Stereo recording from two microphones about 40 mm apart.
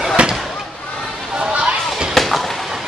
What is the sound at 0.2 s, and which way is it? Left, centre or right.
Fireworks, right.